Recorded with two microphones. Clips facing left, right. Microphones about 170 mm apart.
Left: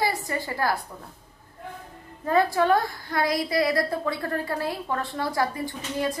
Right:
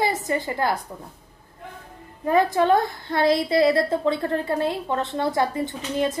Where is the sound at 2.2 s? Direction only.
20° right (ahead or behind).